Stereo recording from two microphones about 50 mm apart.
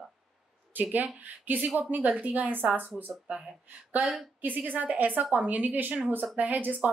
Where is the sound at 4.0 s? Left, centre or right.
Centre.